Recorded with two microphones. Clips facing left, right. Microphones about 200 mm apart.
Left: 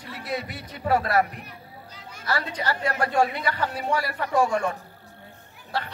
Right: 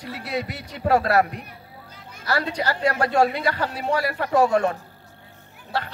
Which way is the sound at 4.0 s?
65° right (ahead or behind).